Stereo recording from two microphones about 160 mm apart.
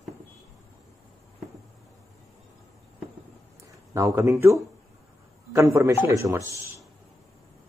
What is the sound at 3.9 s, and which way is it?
Speech, 20° right (ahead or behind).